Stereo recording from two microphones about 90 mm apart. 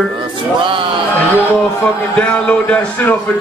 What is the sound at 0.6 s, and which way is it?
Music, 70° right (ahead or behind).